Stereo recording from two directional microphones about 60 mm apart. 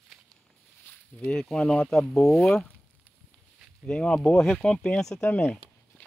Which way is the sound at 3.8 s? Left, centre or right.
Centre.